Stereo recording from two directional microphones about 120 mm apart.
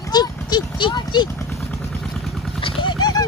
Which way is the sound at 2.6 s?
40° left (ahead or behind).